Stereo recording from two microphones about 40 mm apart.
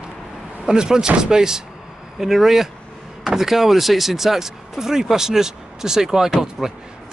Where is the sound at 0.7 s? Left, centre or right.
Centre.